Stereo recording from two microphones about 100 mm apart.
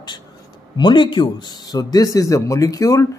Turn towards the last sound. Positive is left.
turn(degrees=35)  # may be behind; listen again after turning